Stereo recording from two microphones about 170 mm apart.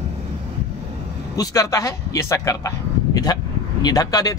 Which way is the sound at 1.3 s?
20° left (ahead or behind).